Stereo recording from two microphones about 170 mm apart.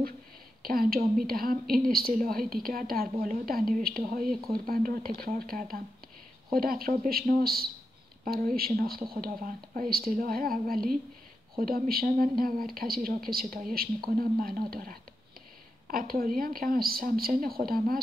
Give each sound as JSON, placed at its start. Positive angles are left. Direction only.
{"t": 0.6, "sound": "a woman's voice", "side_deg": -60}